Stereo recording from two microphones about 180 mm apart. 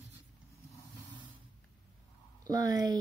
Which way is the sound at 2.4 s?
20° right (ahead or behind).